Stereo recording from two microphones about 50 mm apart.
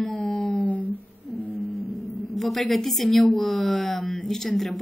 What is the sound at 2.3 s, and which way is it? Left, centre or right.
A woman's voice, centre.